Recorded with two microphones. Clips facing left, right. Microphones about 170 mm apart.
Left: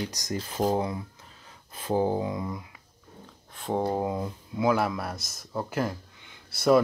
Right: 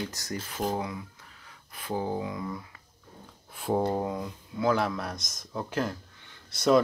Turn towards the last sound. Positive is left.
turn(degrees=5)  # may be behind; listen again after turning